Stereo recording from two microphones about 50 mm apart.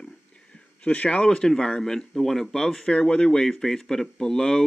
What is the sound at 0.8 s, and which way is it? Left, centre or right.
Speech, left.